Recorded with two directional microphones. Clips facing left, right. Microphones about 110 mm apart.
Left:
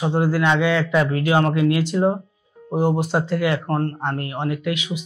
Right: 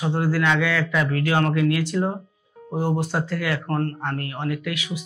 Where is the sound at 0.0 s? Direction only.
20° left (ahead or behind).